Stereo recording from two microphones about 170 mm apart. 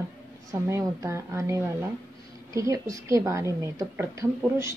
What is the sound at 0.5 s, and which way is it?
A woman's voice, 15° right (ahead or behind).